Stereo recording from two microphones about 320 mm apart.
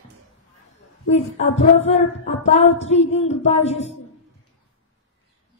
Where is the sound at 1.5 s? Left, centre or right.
Centre.